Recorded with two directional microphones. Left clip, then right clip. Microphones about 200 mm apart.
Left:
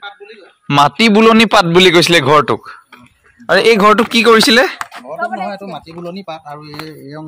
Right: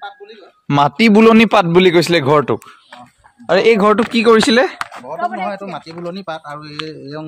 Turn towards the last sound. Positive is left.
turn(degrees=-5)  # may be behind; listen again after turning